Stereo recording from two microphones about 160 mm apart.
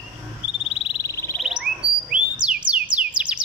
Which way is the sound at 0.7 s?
35° left (ahead or behind).